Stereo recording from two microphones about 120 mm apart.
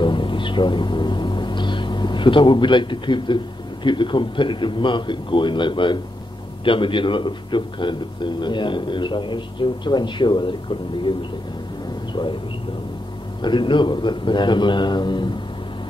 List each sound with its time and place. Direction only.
0.0 s music: 40° left (ahead or behind)
3.8 s a man's voice: 40° left (ahead or behind)
12.1 s a sound: 40° left (ahead or behind)
13.4 s a man's voice: 40° left (ahead or behind)